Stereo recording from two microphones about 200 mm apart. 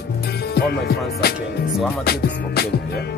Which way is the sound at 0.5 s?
50° left (ahead or behind).